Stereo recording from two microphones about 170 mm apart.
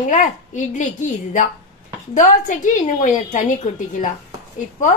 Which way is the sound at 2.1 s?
50° left (ahead or behind).